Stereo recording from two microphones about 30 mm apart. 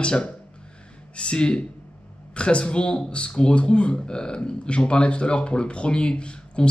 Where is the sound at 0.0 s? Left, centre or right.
Left.